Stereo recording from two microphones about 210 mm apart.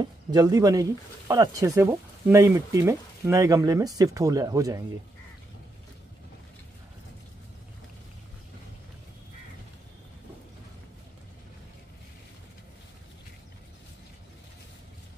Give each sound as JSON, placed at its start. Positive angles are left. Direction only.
{"t": 0.0, "sound": "speech", "side_deg": -20}